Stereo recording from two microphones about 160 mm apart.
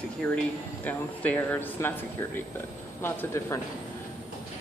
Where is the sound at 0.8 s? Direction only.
10° left (ahead or behind).